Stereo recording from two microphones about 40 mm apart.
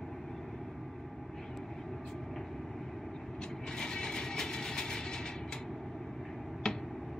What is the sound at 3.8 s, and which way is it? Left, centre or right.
Train, centre.